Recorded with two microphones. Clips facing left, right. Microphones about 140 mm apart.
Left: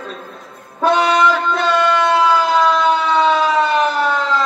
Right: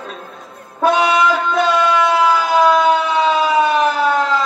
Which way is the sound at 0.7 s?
10° right (ahead or behind).